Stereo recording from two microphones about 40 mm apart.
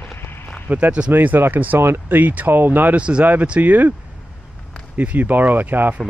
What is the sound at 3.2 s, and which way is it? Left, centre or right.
Speech, right.